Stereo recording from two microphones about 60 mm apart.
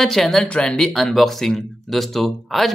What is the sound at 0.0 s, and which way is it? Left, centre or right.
Speech, centre.